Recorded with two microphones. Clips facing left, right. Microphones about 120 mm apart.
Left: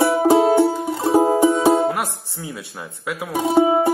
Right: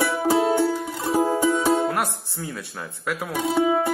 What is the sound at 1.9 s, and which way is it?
Speech, centre (ahead or behind).